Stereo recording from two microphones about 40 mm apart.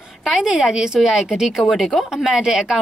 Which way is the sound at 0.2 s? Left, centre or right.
Centre.